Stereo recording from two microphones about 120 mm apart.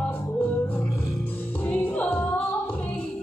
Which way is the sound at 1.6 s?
10° left (ahead or behind).